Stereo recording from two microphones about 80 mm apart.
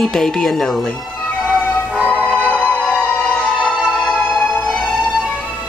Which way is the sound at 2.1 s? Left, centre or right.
Centre.